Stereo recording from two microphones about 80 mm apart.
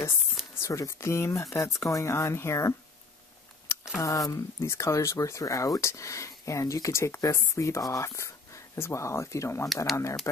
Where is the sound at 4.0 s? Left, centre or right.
Left.